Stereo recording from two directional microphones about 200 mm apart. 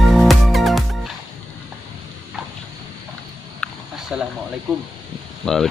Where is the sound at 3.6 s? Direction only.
Centre (ahead or behind).